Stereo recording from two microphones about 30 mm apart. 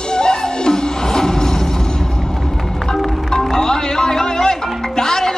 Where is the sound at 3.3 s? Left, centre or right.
Centre.